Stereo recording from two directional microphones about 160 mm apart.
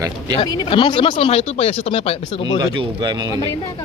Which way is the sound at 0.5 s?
30° left (ahead or behind).